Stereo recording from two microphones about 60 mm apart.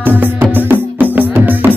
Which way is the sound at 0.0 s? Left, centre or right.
Right.